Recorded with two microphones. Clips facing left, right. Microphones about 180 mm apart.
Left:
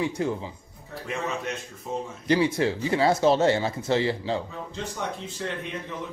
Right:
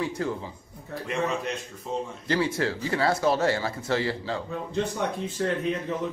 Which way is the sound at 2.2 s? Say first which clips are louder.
Left 4 dB; 20° left (ahead or behind).